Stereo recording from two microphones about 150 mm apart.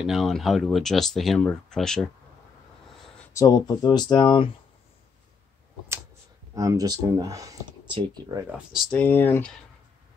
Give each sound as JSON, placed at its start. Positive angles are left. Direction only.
{"t": 0.0, "sound": "speech", "side_deg": 0}
{"t": 3.3, "sound": "speech", "side_deg": 25}
{"t": 6.5, "sound": "speech", "side_deg": -25}
{"t": 8.9, "sound": "speech", "side_deg": 10}